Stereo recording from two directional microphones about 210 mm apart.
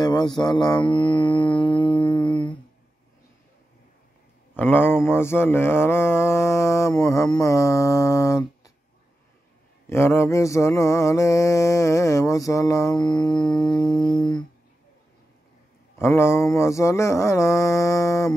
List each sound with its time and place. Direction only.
0.0 s mantra: 20° left (ahead or behind)
2.3 s humming: 5° left (ahead or behind)
4.6 s mantra: 10° left (ahead or behind)
9.8 s mantra: 10° left (ahead or behind)
13.7 s a sound: 20° left (ahead or behind)
16.2 s mantra: 10° left (ahead or behind)